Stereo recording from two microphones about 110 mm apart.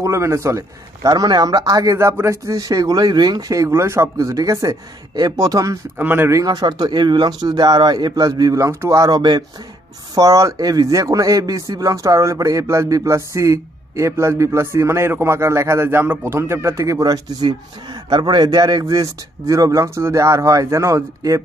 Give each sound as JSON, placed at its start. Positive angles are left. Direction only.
{"t": 0.0, "sound": "a man's voice", "side_deg": -25}
{"t": 5.9, "sound": "speech", "side_deg": -20}
{"t": 6.4, "sound": "a man's voice", "side_deg": -40}